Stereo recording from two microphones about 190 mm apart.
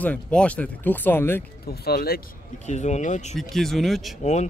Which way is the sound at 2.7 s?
35° left (ahead or behind).